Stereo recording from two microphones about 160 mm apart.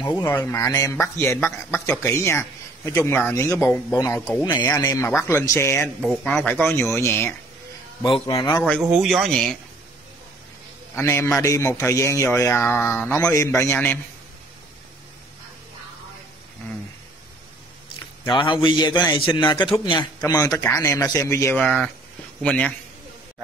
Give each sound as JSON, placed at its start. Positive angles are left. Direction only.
{"t": 0.0, "sound": "a man's voice", "side_deg": 15}
{"t": 8.7, "sound": "speech", "side_deg": -5}
{"t": 11.0, "sound": "a man's voice", "side_deg": 15}
{"t": 18.3, "sound": "a man's voice", "side_deg": 30}
{"t": 21.5, "sound": "speech", "side_deg": 5}